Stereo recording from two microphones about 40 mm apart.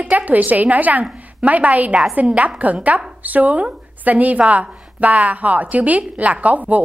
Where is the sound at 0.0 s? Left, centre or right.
Right.